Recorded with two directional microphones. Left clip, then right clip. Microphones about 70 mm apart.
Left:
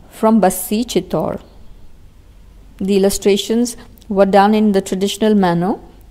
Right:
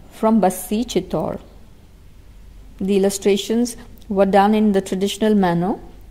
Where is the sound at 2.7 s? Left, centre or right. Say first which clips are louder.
Left 3 dB; centre.